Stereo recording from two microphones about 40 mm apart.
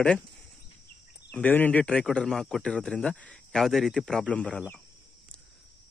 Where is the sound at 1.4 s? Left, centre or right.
Left.